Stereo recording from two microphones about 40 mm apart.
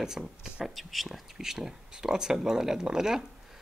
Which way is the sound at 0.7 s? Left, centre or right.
Centre.